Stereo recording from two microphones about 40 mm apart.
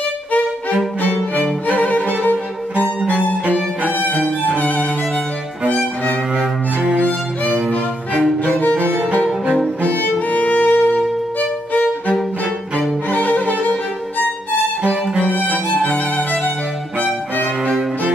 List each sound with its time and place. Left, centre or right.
1.8 s violin: left
4.6 s violin: left
6.8 s music: right
8.7 s violin: right
10.1 s music: left
11.3 s violin: left
14.8 s music: right
15.5 s music: left
17.0 s music: left